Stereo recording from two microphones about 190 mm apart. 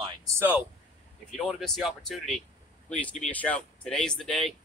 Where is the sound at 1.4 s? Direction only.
5° left (ahead or behind).